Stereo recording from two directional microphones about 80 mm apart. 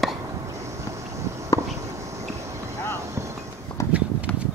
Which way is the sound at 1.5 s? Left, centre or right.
Left.